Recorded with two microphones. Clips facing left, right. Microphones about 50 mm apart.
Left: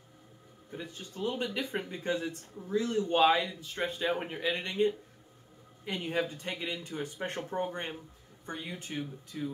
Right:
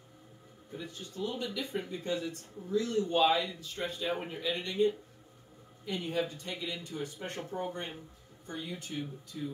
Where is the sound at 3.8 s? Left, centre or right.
Left.